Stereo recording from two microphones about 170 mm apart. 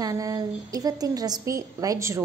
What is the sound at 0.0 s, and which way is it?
A woman's voice, 20° right (ahead or behind).